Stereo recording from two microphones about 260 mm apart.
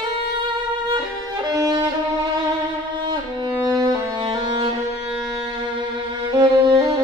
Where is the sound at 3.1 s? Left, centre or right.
Centre.